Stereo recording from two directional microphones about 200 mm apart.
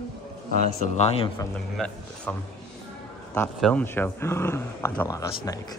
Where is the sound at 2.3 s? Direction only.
5° left (ahead or behind).